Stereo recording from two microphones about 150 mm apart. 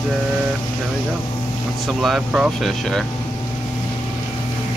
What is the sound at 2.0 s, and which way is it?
Speech, 5° right (ahead or behind).